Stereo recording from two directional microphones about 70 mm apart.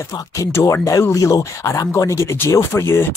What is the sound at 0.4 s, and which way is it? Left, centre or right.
Speech, left.